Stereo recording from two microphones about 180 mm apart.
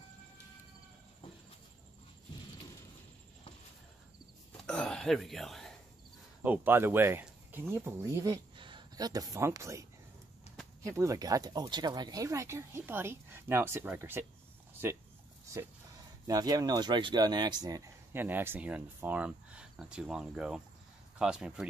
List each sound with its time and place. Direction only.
4.6 s a sound: 5° left (ahead or behind)
6.4 s speech: 10° right (ahead or behind)
16.3 s speech: 20° right (ahead or behind); by 21.6 s 5° right (ahead or behind)